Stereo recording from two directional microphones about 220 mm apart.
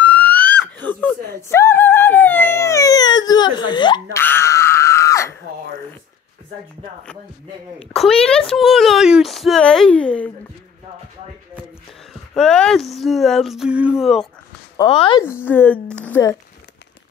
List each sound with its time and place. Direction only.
0.0 s screaming: 5° left (ahead or behind)
4.2 s groan: 10° left (ahead or behind)
7.9 s a woman's voice: centre (ahead or behind)
12.1 s a woman's voice: centre (ahead or behind)
14.8 s speech: 20° left (ahead or behind)
15.4 s speech: 10° left (ahead or behind)